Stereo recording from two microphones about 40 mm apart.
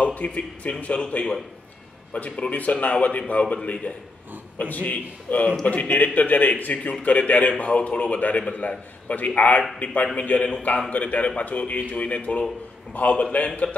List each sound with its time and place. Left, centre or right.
0.0 s a man's voice: left
10.1 s a man's voice: left